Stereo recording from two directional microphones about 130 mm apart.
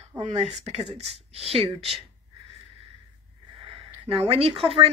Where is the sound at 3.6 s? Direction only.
40° right (ahead or behind).